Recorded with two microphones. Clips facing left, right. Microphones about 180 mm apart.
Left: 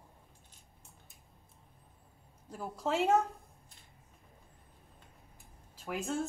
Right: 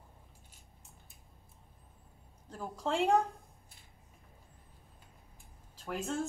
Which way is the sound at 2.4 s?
10° left (ahead or behind).